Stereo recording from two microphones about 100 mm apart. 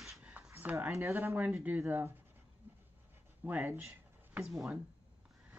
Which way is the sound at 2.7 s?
20° right (ahead or behind).